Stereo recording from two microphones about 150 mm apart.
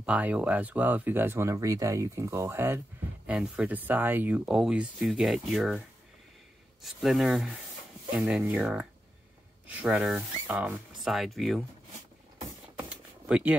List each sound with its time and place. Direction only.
0.0 s speech: 10° right (ahead or behind)
6.8 s speech: centre (ahead or behind)
12.7 s a sound: 10° right (ahead or behind)